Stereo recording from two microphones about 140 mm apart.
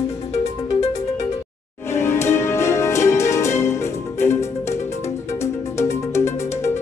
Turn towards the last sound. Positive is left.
turn(degrees=20)  # may be behind; listen again after turning